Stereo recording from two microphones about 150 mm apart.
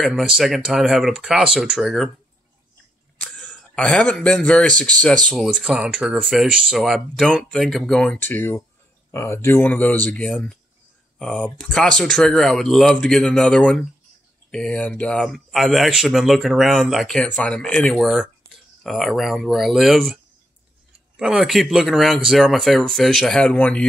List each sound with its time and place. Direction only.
0.0 s speech: 5° right (ahead or behind)
3.2 s speech: 10° left (ahead or behind)
21.2 s speech: 5° right (ahead or behind)